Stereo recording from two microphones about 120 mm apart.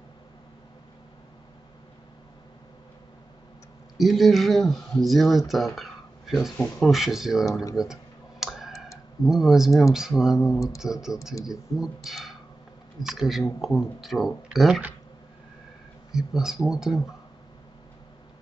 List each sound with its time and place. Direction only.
4.0 s speech: centre (ahead or behind)
7.7 s computer keyboard: 5° right (ahead or behind)
8.7 s clicking: 25° left (ahead or behind)
9.2 s speech: 5° right (ahead or behind)
16.1 s speech: 5° right (ahead or behind)